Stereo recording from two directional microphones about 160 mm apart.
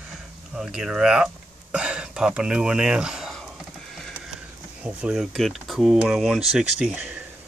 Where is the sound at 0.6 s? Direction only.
5° right (ahead or behind).